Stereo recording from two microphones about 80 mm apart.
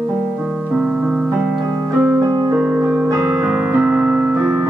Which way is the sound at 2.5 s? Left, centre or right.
Right.